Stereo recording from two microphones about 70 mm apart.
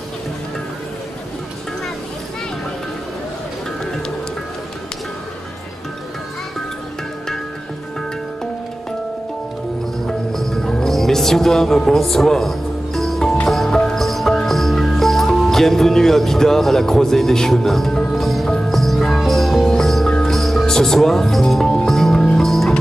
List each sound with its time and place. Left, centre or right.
10.0 s music: centre
18.5 s music: centre
18.8 s music: centre